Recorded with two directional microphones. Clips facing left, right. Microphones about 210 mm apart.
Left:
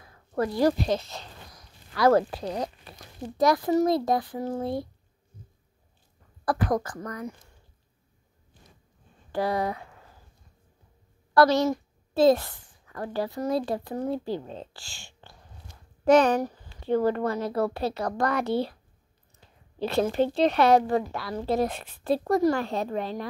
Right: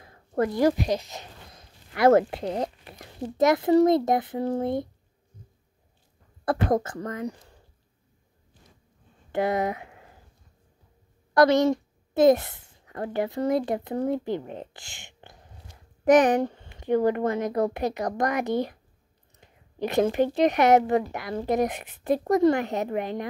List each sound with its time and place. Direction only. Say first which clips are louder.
0.0 s a sound: right 2 dB; 30° right (ahead or behind)
0.5 s speech: even; 20° right (ahead or behind)
6.4 s speech: right 2 dB; 25° right (ahead or behind)
9.3 s speech: right 2 dB; 20° right (ahead or behind)
11.3 s a woman's voice: right 2 dB; 20° right (ahead or behind)